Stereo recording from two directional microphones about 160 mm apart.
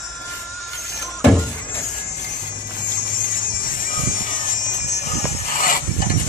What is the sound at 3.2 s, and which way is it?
Music, 60° left (ahead or behind).